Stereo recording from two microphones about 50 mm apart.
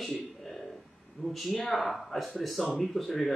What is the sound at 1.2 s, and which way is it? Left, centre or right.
Speech, centre.